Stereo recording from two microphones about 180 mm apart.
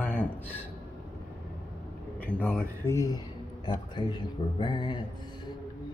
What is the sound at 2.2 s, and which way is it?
Speech, 10° left (ahead or behind).